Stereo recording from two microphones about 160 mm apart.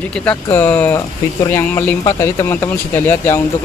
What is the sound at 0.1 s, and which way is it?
Speech, 10° left (ahead or behind).